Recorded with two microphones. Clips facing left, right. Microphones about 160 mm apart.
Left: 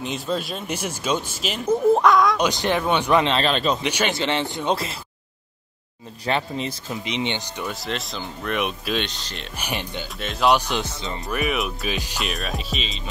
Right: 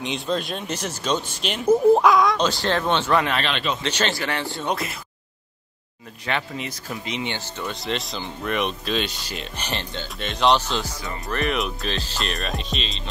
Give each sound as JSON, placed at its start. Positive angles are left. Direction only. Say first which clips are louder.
{"t": 0.0, "sound": "speech", "louder": "right 1 dB", "side_deg": 5}
{"t": 2.3, "sound": "speech", "louder": "left 1 dB", "side_deg": 15}
{"t": 3.4, "sound": "speech", "louder": "left 4 dB", "side_deg": 40}
{"t": 3.8, "sound": "speech", "louder": "left 2 dB", "side_deg": 15}
{"t": 6.2, "sound": "speech", "louder": "left 3 dB", "side_deg": 30}
{"t": 7.7, "sound": "speech", "louder": "right 1 dB", "side_deg": 0}
{"t": 9.0, "sound": "speech", "louder": "right 2 dB", "side_deg": -10}
{"t": 9.6, "sound": "speech", "louder": "left 3 dB", "side_deg": 10}
{"t": 11.2, "sound": "speech", "louder": "even", "side_deg": 5}
{"t": 12.3, "sound": "speech", "louder": "even", "side_deg": 0}